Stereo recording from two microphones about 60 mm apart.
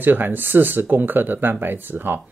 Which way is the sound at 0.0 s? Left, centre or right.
Right.